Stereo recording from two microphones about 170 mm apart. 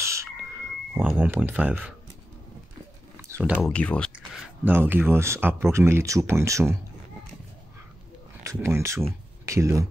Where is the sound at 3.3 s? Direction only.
10° right (ahead or behind).